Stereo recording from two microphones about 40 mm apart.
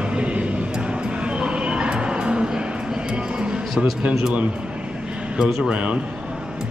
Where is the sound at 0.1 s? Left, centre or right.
Right.